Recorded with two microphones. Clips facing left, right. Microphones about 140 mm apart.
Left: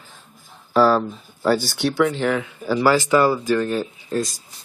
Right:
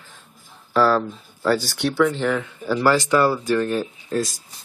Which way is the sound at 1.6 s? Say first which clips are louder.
Even; centre (ahead or behind).